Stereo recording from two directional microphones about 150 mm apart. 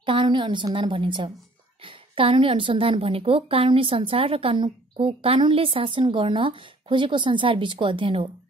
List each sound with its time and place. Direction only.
0.0 s a woman's voice: 35° right (ahead or behind)